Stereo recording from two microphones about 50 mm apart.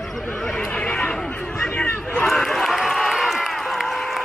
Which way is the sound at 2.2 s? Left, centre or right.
Centre.